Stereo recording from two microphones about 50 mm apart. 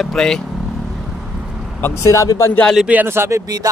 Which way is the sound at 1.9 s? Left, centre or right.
Left.